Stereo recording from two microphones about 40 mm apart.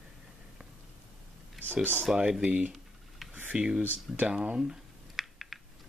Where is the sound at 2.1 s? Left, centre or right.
Centre.